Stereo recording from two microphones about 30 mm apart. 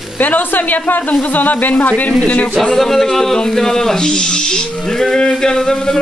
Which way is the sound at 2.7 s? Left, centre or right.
Centre.